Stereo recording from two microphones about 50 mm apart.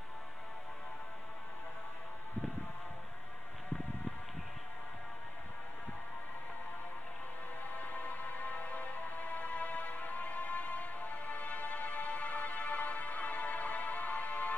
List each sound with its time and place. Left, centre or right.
7.6 s music: left